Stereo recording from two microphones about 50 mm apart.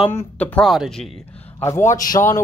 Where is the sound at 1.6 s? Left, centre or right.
Left.